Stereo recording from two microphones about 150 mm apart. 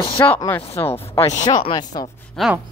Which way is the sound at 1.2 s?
50° left (ahead or behind).